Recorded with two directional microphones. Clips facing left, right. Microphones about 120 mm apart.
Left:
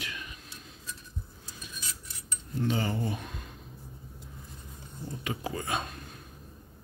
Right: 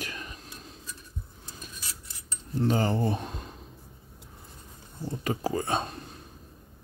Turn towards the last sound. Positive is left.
turn(degrees=-30)  # may be behind; listen again after turning